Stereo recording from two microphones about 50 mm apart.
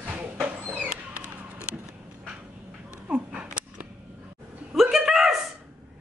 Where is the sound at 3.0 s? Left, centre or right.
Right.